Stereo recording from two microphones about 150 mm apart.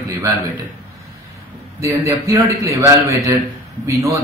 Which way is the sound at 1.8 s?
20° right (ahead or behind).